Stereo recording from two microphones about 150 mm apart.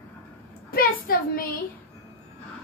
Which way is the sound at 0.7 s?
75° left (ahead or behind).